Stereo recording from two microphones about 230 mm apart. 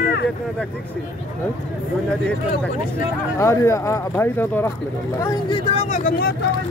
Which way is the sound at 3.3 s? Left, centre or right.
Centre.